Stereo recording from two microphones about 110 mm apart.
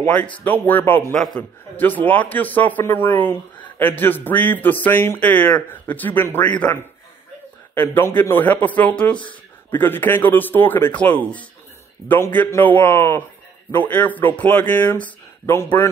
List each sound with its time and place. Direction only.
0.0 s speech: 15° left (ahead or behind)
1.1 s a man's voice: 5° left (ahead or behind)
1.8 s speech: 15° left (ahead or behind)